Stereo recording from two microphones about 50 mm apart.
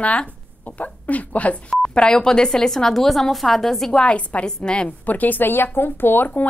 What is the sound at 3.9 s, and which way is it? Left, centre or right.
A woman's voice, left.